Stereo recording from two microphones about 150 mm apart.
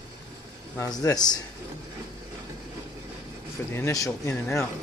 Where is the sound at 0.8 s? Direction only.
25° left (ahead or behind).